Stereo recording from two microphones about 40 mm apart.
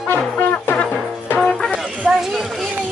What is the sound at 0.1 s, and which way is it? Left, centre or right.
Music, left.